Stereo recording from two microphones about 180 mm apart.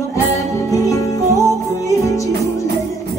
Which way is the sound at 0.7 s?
15° left (ahead or behind).